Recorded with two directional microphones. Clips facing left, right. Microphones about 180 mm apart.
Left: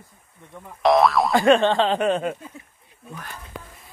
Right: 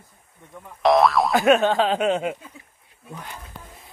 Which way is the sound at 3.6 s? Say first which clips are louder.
Left 4 dB; 90° left.